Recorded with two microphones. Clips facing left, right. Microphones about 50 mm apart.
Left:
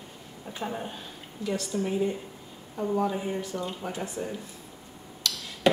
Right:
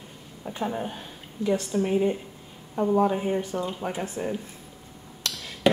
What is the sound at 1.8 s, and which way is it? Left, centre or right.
Speech, right.